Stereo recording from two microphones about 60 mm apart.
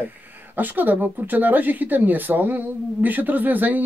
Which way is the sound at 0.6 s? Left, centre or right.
Right.